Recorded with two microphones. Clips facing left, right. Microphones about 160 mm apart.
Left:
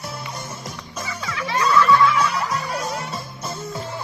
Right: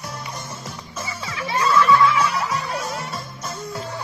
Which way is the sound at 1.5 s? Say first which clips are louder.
Even; 5° right (ahead or behind).